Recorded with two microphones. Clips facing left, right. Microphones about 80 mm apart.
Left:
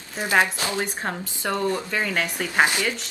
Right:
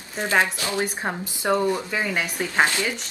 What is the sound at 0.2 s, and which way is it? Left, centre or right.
Speech, centre.